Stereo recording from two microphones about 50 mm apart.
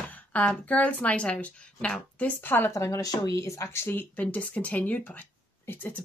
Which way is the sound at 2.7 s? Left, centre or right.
Left.